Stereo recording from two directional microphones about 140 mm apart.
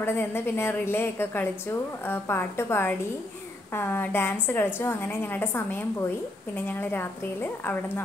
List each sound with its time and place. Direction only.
0.0 s a woman's voice: 15° left (ahead or behind)